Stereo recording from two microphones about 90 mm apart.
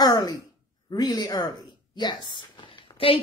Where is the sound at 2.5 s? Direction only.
90° left.